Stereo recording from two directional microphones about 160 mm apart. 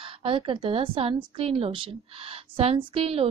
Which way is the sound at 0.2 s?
35° right (ahead or behind).